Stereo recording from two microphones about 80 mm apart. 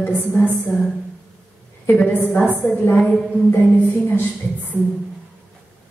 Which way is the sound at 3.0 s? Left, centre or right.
Centre.